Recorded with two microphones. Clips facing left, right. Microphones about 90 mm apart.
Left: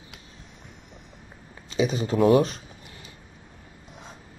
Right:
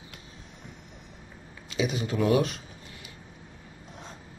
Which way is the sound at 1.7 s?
35° left (ahead or behind).